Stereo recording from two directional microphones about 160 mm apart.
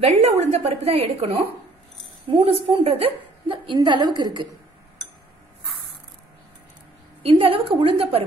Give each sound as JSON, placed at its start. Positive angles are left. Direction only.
{"t": 0.0, "sound": "a woman's voice", "side_deg": -40}
{"t": 7.2, "sound": "a woman's voice", "side_deg": -35}